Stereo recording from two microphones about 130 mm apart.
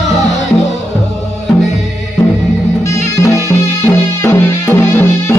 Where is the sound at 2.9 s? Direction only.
20° left (ahead or behind).